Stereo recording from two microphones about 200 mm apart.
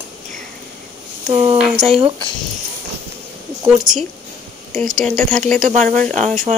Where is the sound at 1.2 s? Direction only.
20° right (ahead or behind).